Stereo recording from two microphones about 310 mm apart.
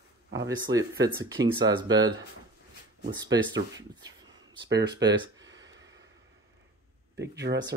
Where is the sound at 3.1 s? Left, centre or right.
Centre.